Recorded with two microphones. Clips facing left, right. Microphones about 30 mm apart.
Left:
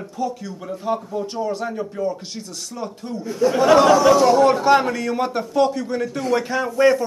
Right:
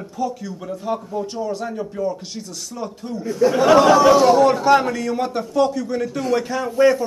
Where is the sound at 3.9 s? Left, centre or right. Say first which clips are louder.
Right 1 dB; right.